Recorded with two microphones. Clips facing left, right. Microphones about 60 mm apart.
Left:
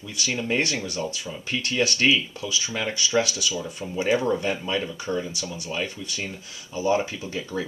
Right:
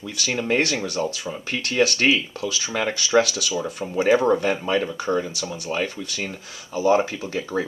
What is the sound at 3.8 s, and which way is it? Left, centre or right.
Speech, right.